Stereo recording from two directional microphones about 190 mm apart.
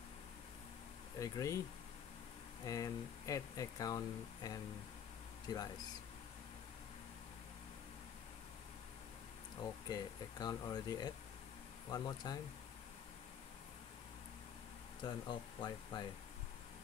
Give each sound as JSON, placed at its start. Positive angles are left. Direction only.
{"t": 1.2, "sound": "speech", "side_deg": 15}
{"t": 2.6, "sound": "speech", "side_deg": 20}
{"t": 9.6, "sound": "speech", "side_deg": 20}
{"t": 15.0, "sound": "speech", "side_deg": 25}